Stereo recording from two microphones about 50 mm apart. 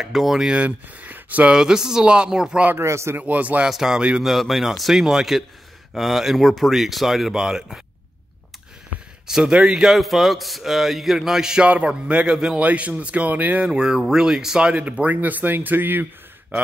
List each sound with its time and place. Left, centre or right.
0.0 s a man's voice: centre
0.5 s speech: right
1.5 s speech: centre
2.8 s a man's voice: right
3.2 s speech: right
3.6 s a man's voice: centre
9.3 s a man's voice: centre
11.6 s speech: right
12.5 s speech: right
13.6 s speech: centre
15.1 s speech: right